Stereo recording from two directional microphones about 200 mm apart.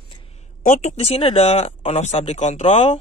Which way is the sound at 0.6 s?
40° left (ahead or behind).